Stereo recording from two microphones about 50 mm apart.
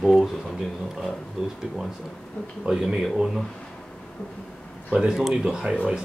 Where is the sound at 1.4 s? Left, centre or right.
Centre.